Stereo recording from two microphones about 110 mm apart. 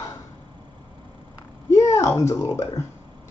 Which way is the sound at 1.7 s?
25° left (ahead or behind).